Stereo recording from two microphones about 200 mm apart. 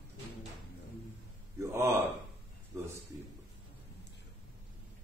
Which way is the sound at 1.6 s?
15° right (ahead or behind).